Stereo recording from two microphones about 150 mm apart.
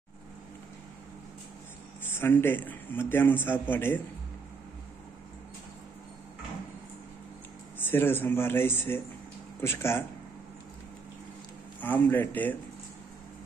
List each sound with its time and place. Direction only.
2.0 s a man's voice: 15° left (ahead or behind)
7.8 s a man's voice: 15° left (ahead or behind)
11.8 s a man's voice: 10° left (ahead or behind)